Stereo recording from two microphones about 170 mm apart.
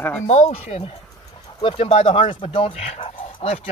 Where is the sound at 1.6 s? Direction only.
30° left (ahead or behind).